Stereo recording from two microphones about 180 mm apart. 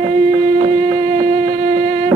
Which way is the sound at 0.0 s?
35° right (ahead or behind).